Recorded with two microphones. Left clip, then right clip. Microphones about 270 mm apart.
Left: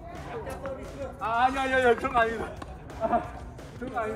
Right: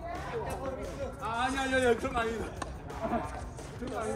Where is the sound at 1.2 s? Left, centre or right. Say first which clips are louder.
Left 7 dB; centre.